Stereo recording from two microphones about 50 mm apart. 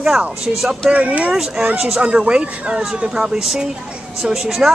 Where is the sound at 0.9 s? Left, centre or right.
Right.